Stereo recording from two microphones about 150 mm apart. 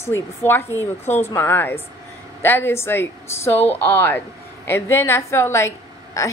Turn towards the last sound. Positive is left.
turn(degrees=20)  # may be behind; listen again after turning